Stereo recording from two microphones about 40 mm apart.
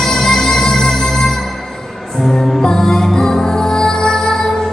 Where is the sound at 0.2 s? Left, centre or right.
Centre.